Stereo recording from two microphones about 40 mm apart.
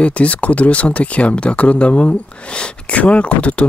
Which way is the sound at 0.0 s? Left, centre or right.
Left.